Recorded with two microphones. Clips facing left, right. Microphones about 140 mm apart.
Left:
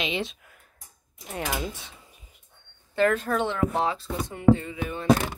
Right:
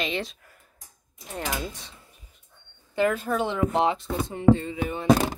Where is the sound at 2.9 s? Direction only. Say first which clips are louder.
Left 1 dB; 10° right (ahead or behind).